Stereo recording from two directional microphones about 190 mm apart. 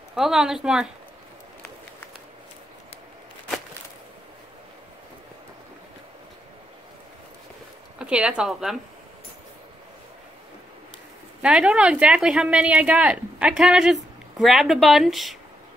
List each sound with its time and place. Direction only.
0.1 s speech: centre (ahead or behind)
8.0 s speech: 5° right (ahead or behind)
11.4 s speech: 5° right (ahead or behind)